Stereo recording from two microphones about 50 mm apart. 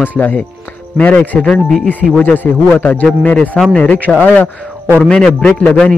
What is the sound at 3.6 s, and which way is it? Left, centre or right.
A man's voice, centre.